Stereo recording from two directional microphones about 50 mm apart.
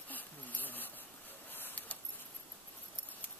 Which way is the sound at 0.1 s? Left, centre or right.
Left.